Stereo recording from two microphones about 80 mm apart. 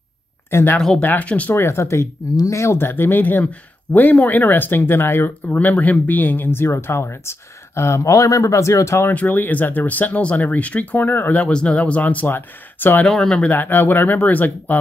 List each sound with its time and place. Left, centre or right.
0.5 s speech: left
0.7 s speech: centre
1.0 s speech: centre
1.5 s speech: left
9.1 s speech: left
13.0 s speech: centre
13.5 s speech: left